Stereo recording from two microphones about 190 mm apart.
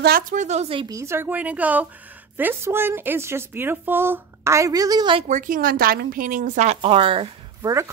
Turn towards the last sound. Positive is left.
turn(degrees=-30)  # may be behind; listen again after turning